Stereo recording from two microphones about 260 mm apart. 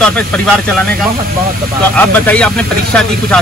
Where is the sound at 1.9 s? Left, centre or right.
Centre.